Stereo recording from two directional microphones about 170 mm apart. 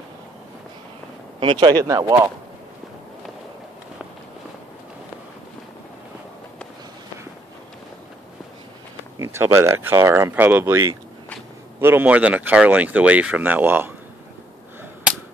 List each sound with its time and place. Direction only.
1.4 s speech: 30° right (ahead or behind)
9.2 s speech: 15° right (ahead or behind)